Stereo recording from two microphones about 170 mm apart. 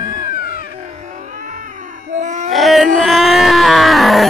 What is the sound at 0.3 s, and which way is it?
Music, 60° left (ahead or behind).